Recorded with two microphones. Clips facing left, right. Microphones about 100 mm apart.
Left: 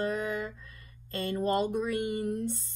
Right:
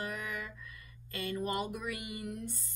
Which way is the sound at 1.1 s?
30° left (ahead or behind).